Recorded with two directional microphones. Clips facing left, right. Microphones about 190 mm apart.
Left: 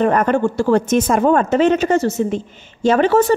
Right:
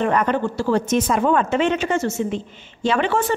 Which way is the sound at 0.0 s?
45° left (ahead or behind).